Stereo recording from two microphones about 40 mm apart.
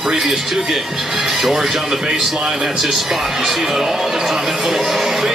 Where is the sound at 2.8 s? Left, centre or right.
Centre.